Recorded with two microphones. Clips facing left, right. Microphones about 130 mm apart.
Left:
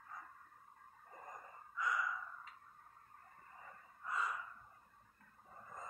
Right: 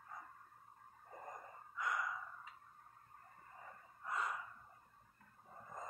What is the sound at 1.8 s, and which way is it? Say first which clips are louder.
Gasp: left 2 dB; 50° right (ahead or behind).